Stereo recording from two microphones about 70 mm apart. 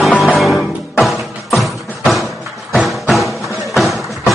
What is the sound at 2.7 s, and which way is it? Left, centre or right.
Music, centre.